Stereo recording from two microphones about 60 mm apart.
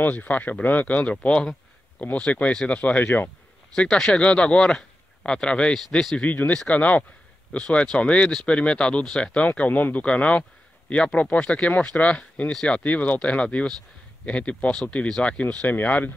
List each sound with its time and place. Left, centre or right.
0.0 s speech: left; by 6.2 s centre
6.2 s speech: left
9.5 s speech: left